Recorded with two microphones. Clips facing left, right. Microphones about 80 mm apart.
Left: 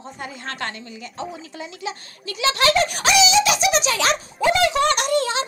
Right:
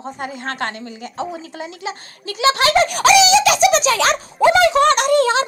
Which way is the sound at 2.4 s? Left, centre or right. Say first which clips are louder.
Right 5 dB; right.